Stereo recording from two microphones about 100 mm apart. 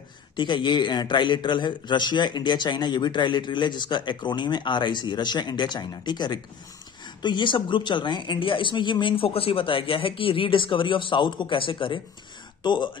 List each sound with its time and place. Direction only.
0.4 s speech: 50° left (ahead or behind)